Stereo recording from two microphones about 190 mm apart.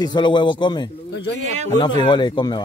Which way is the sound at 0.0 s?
25° left (ahead or behind).